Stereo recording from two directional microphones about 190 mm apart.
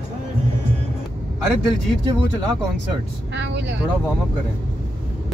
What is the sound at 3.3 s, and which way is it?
Vehicle, 70° right (ahead or behind).